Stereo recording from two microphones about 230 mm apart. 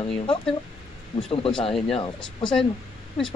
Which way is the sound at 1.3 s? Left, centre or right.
Left.